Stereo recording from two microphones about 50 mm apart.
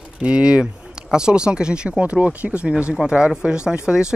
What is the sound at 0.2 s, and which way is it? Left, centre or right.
Speech, centre.